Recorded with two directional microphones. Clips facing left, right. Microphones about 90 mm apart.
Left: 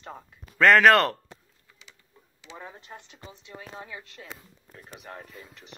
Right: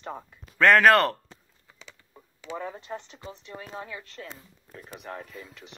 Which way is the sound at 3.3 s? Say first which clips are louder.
Right 4 dB; 15° left (ahead or behind).